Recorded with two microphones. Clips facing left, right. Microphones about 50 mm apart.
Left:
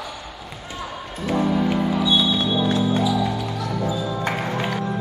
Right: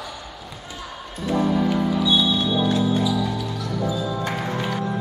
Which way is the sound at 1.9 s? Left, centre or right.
Left.